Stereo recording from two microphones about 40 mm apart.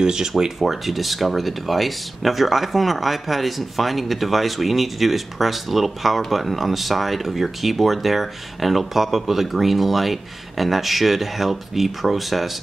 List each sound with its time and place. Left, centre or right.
0.0 s speech: centre
0.4 s speech: centre